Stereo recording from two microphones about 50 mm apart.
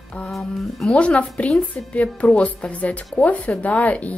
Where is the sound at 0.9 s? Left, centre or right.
Left.